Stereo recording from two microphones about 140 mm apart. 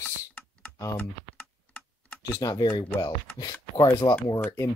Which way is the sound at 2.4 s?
30° left (ahead or behind).